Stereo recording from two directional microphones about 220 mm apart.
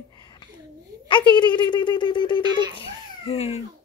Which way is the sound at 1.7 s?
20° left (ahead or behind).